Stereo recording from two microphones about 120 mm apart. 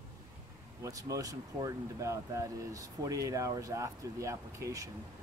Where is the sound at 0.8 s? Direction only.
30° right (ahead or behind).